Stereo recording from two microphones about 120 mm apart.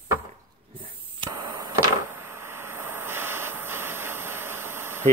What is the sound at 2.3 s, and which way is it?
Vehicle, 20° right (ahead or behind).